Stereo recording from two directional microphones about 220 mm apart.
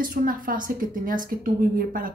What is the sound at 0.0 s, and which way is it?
Speech, 40° right (ahead or behind).